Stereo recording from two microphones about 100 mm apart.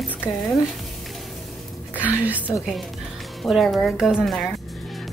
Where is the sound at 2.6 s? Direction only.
Centre (ahead or behind).